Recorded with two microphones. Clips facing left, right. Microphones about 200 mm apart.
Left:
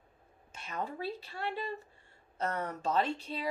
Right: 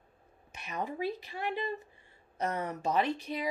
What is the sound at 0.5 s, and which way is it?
Speech, 15° right (ahead or behind).